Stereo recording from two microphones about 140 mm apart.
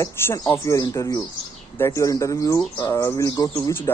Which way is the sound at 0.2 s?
15° left (ahead or behind).